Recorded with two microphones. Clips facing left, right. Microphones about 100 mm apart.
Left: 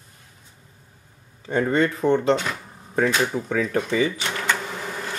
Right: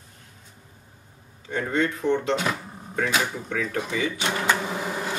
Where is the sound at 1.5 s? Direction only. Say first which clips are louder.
Left 4 dB; 40° left (ahead or behind).